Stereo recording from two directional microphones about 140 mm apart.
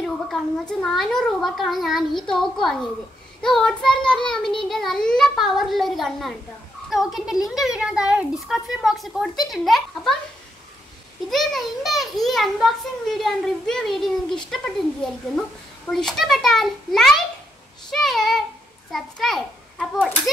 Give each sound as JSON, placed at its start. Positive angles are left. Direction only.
{"t": 0.0, "sound": "a child's voice", "side_deg": 5}
{"t": 7.4, "sound": "a child's voice", "side_deg": -5}
{"t": 11.2, "sound": "a child's voice", "side_deg": 0}
{"t": 15.9, "sound": "a child's voice", "side_deg": 5}
{"t": 17.9, "sound": "child singing", "side_deg": 0}
{"t": 18.9, "sound": "a child's voice", "side_deg": 0}